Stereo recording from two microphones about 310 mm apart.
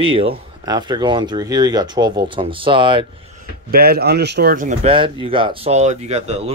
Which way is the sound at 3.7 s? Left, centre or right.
Right.